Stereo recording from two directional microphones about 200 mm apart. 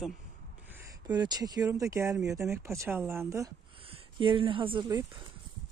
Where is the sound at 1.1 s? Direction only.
20° right (ahead or behind).